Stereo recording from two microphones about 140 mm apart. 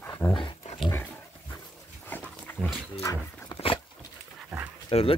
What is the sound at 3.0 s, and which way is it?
Dog, 25° left (ahead or behind).